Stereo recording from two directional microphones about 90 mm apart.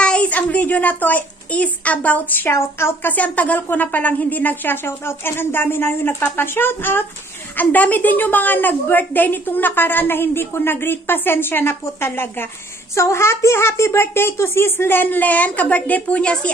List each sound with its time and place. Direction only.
0.0 s a woman's voice: 10° left (ahead or behind)